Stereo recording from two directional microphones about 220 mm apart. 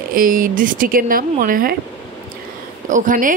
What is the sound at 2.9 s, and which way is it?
Speech, 35° right (ahead or behind).